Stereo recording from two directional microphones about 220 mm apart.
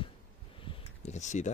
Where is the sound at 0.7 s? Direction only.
30° left (ahead or behind).